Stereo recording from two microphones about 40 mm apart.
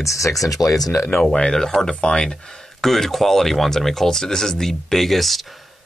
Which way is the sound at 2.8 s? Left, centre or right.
Centre.